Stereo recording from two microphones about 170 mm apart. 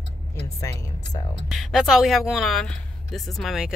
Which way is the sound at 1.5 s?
Centre (ahead or behind).